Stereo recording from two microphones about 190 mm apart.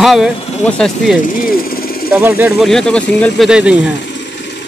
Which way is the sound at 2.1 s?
10° right (ahead or behind).